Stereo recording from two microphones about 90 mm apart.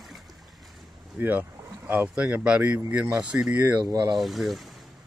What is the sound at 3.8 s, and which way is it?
Speech, 45° right (ahead or behind).